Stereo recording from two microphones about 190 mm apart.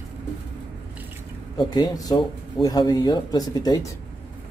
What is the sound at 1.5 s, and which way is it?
Speech, 20° left (ahead or behind).